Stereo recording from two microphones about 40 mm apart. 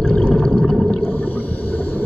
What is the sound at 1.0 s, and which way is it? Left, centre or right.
Whale vocalization, left.